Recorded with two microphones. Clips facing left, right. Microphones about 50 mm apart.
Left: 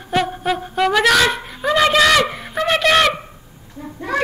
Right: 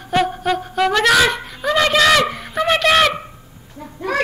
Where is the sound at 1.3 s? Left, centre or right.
Centre.